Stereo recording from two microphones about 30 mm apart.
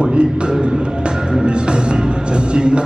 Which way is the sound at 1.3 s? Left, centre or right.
Right.